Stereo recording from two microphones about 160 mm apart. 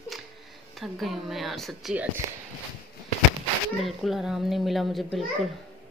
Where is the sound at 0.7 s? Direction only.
Centre (ahead or behind).